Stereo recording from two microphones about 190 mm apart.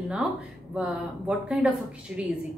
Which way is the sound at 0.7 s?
5° right (ahead or behind).